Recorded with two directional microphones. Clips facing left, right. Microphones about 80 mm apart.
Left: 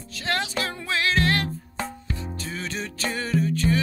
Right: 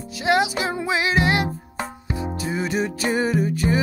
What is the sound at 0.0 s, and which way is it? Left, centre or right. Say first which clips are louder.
Music: right 8 dB; centre.